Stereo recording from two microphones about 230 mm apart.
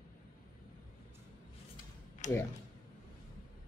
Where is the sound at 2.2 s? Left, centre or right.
Left.